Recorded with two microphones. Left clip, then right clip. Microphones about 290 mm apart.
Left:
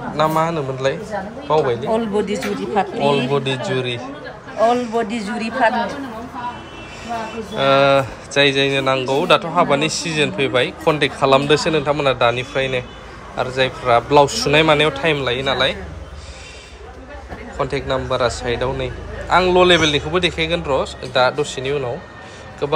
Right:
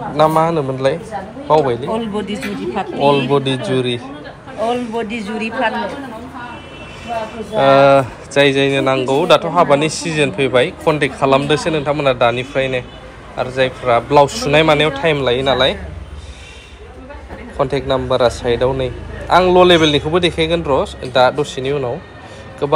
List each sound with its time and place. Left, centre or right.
0.2 s speech: centre
1.9 s speech: left
3.0 s speech: centre
4.6 s speech: left
7.5 s a man's voice: centre
17.6 s speech: centre